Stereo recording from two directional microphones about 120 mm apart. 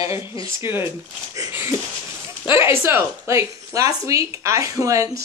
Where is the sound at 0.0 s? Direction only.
25° right (ahead or behind).